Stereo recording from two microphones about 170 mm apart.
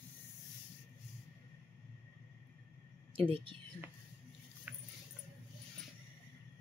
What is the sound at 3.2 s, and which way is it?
Speech, 30° right (ahead or behind).